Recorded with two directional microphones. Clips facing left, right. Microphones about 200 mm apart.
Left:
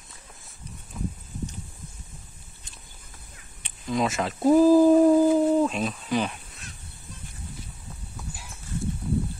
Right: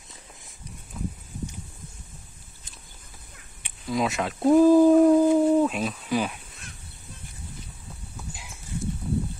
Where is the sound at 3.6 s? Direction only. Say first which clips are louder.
Even; 5° right (ahead or behind).